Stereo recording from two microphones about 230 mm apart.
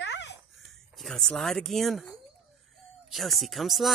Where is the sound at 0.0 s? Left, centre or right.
Left.